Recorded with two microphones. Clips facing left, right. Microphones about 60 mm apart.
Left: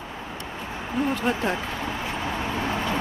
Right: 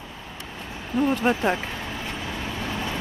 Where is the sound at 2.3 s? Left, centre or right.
Left.